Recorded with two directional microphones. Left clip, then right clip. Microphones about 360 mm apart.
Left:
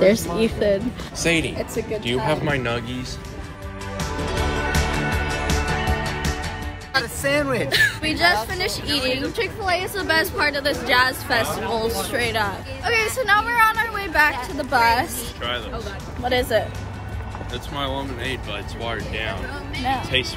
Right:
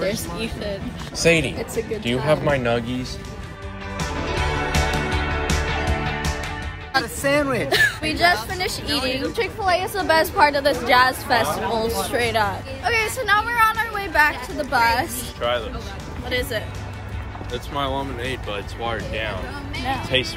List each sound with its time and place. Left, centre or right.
0.0 s speech: left
1.2 s speech: centre
4.7 s music: centre
7.0 s speech: centre
15.4 s speech: centre
16.3 s speech: centre
17.5 s speech: centre